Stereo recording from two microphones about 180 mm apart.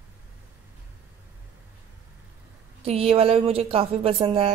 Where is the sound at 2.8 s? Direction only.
35° right (ahead or behind).